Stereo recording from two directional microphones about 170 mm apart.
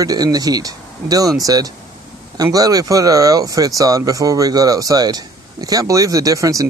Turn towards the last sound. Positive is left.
turn(degrees=-20)  # may be behind; listen again after turning